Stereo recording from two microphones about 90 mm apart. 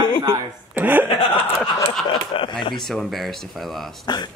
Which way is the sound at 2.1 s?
60° left (ahead or behind).